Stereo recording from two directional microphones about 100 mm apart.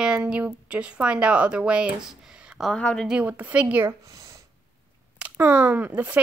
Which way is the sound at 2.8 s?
10° left (ahead or behind).